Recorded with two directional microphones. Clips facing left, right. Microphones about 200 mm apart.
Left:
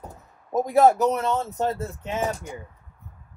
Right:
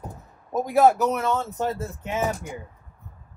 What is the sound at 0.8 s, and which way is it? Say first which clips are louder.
Speech: right 1 dB; 20° left (ahead or behind).